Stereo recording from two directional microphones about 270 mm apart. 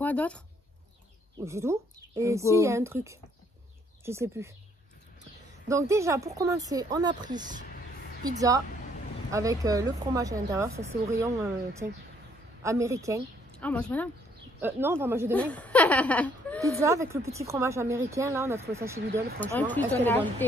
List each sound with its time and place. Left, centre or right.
0.0 s speech: centre
1.4 s speech: centre
5.7 s speech: centre
13.6 s speech: centre
14.6 s speech: centre
15.3 s speech: centre
16.6 s speech: centre
18.9 s speech: right
19.4 s speech: centre